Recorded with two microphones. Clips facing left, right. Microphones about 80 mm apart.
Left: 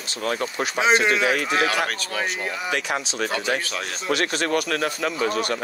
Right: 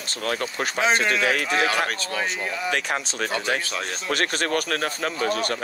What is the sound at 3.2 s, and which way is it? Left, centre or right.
Speech, right.